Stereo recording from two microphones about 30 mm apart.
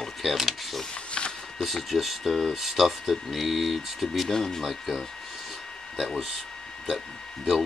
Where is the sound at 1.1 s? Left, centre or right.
Left.